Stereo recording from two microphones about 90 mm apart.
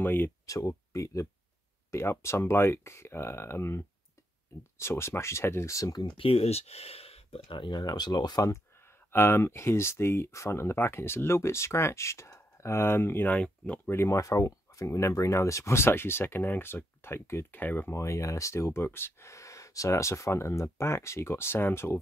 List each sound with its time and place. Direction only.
0.0 s speech: 25° left (ahead or behind)
0.5 s speech: 35° left (ahead or behind)
6.0 s speech: 85° left; by 7.8 s 65° left (ahead or behind)
7.8 s speech: 50° left (ahead or behind)
9.1 s speech: 25° left (ahead or behind)
13.8 s speech: 30° left (ahead or behind)